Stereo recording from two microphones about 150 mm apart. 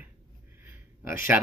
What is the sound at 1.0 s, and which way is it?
Speech, 65° left (ahead or behind).